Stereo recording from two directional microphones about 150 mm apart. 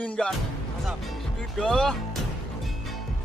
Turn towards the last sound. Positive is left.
turn(degrees=0)  # may be behind; listen again after turning